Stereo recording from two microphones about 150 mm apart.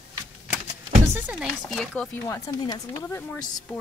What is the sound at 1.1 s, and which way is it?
Speech, 10° right (ahead or behind).